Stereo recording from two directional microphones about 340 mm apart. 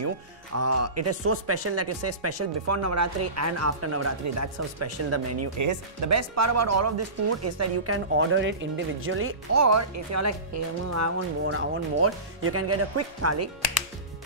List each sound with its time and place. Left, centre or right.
0.6 s speech: right
9.6 s speech: right
11.5 s speech: right